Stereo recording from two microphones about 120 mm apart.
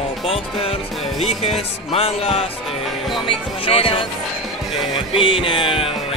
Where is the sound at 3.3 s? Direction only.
50° left (ahead or behind).